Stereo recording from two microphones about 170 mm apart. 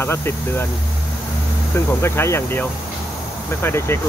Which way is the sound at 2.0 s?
15° left (ahead or behind).